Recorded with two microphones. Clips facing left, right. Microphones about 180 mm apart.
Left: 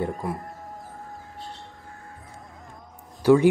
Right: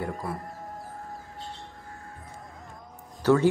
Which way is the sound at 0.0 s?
20° left (ahead or behind).